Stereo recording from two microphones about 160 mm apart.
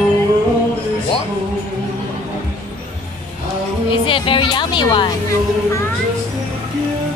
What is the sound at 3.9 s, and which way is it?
A woman's voice, 35° left (ahead or behind).